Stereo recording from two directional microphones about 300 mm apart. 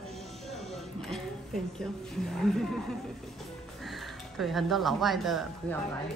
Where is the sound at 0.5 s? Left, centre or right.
Centre.